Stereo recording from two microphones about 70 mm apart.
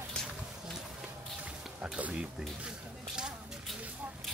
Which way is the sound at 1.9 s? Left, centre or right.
Centre.